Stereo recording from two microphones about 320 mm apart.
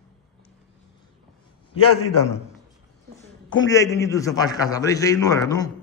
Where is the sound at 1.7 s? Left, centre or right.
Centre.